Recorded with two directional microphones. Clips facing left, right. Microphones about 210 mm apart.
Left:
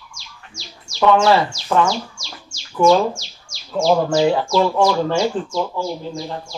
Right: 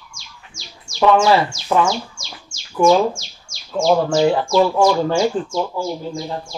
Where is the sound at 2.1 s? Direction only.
50° right (ahead or behind).